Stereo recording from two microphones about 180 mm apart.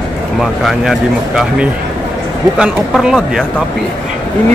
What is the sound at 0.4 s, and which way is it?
Speech, centre (ahead or behind).